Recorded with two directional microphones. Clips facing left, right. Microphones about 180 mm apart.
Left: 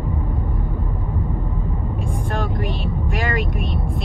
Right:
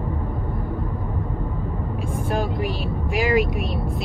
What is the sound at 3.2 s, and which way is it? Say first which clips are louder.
Speech: right 6 dB; centre (ahead or behind).